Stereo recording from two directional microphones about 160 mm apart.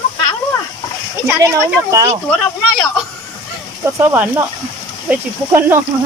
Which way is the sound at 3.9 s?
10° right (ahead or behind).